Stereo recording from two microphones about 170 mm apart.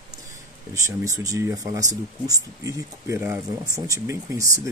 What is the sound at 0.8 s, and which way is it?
Speech, 20° right (ahead or behind).